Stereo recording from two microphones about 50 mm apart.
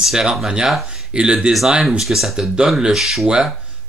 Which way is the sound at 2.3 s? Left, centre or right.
Centre.